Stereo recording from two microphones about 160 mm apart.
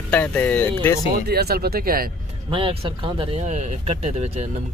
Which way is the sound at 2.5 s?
30° right (ahead or behind).